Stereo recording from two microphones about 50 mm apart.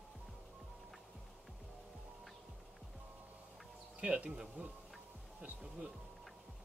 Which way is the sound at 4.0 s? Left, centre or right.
Right.